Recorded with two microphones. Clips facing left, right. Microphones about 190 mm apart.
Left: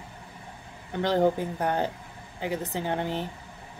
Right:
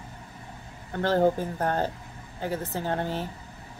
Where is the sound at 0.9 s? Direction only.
15° left (ahead or behind).